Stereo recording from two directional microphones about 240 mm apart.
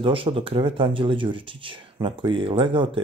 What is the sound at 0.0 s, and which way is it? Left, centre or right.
Speech, right.